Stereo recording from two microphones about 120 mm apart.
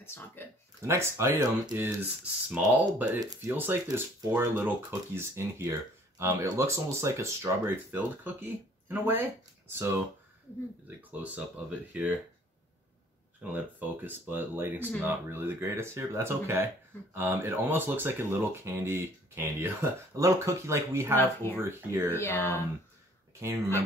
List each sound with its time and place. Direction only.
0.0 s speech: 20° left (ahead or behind)
0.8 s speech: 20° right (ahead or behind)
3.2 s speech: 30° right (ahead or behind)
3.5 s speech: 15° right (ahead or behind)
11.0 s speech: 15° right (ahead or behind)
13.4 s speech: 15° right (ahead or behind)
21.2 s speech: 20° left (ahead or behind)
21.5 s speech: 20° right (ahead or behind)
22.1 s speech: 20° left (ahead or behind)
23.4 s speech: 20° right (ahead or behind)